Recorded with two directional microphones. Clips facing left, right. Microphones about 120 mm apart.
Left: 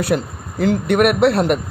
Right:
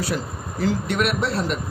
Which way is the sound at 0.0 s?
60° left (ahead or behind).